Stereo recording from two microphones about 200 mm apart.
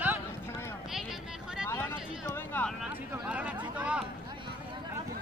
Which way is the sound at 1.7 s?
15° left (ahead or behind).